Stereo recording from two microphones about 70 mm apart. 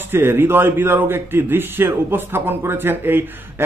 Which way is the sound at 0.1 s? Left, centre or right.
Right.